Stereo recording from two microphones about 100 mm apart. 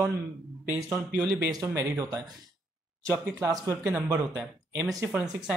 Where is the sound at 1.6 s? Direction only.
30° right (ahead or behind).